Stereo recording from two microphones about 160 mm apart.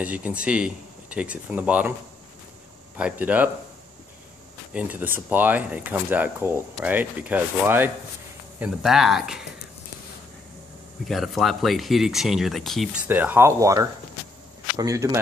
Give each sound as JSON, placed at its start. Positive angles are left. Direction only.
{"t": 0.0, "sound": "speech", "side_deg": -10}
{"t": 3.0, "sound": "speech", "side_deg": -10}
{"t": 4.7, "sound": "speech", "side_deg": -10}
{"t": 11.1, "sound": "speech", "side_deg": 0}